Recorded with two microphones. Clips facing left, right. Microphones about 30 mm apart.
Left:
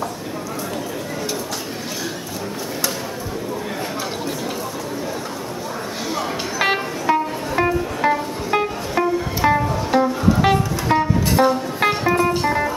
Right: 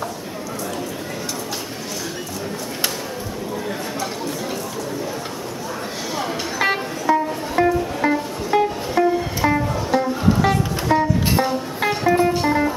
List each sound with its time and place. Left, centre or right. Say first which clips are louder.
6.6 s music: left 1 dB; centre
12.3 s music: right 1 dB; centre